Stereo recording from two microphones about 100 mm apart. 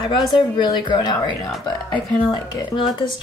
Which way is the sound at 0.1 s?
50° left (ahead or behind).